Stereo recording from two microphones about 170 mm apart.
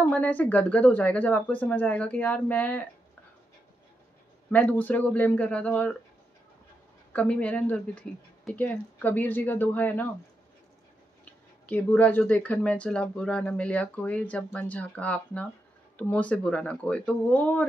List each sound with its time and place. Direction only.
0.0 s speech: 10° left (ahead or behind)
4.5 s speech: 10° left (ahead or behind)
7.1 s speech: 10° left (ahead or behind)
11.6 s speech: 10° left (ahead or behind)